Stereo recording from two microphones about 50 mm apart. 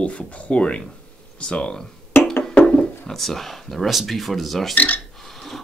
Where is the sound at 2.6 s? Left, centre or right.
Centre.